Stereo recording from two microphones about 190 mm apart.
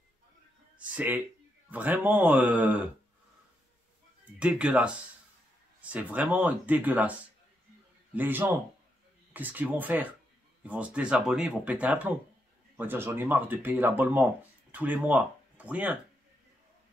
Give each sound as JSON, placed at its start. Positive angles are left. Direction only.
{"t": 0.7, "sound": "speech", "side_deg": -10}
{"t": 4.2, "sound": "speech", "side_deg": -5}